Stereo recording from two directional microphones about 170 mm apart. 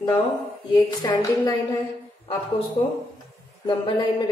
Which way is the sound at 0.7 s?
20° left (ahead or behind).